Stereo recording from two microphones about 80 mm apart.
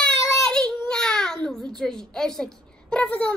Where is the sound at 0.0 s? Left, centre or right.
Centre.